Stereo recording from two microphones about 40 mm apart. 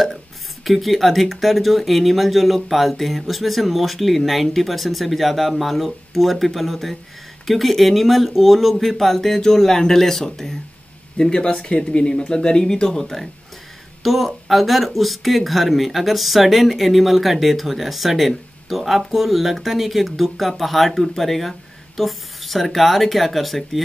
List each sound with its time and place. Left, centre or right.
0.7 s speech: centre